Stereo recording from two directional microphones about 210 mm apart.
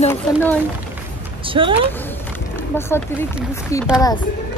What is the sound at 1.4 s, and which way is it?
Speech, 25° right (ahead or behind).